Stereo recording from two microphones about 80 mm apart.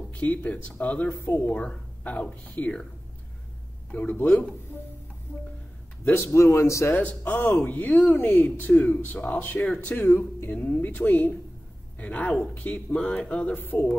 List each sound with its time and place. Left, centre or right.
0.1 s speech: centre
3.9 s speech: left
6.0 s speech: left
6.3 s a man's voice: left
7.0 s speech: centre